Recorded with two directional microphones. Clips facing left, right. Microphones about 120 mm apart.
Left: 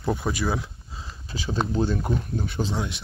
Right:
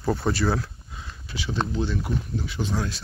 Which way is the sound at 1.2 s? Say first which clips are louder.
Left 1 dB; 40° left (ahead or behind).